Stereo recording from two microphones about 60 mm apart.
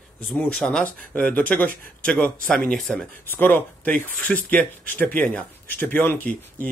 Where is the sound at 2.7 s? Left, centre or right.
Centre.